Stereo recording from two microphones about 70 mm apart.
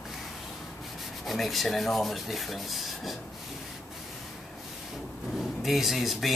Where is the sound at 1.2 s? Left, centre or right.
Centre.